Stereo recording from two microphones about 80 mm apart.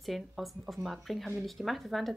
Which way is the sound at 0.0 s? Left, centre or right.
Centre.